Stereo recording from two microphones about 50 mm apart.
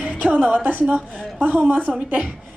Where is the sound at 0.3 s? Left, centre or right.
Right.